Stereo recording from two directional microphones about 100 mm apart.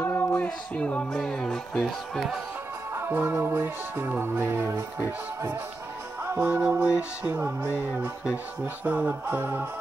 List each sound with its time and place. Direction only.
0.0 s music: 20° left (ahead or behind)
2.9 s music: 25° right (ahead or behind)